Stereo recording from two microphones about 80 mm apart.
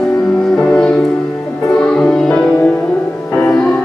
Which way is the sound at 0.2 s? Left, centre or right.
Centre.